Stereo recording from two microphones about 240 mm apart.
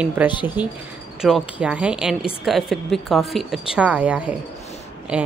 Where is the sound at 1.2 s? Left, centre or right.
Centre.